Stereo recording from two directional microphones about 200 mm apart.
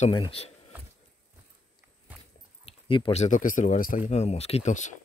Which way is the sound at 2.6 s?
25° left (ahead or behind).